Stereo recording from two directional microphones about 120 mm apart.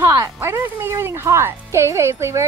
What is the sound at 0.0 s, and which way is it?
Speech, 25° right (ahead or behind).